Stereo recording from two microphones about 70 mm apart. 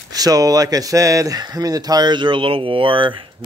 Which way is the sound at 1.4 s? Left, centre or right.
Right.